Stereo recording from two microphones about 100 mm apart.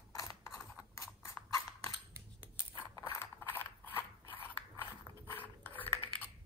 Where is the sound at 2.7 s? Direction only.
50° left (ahead or behind).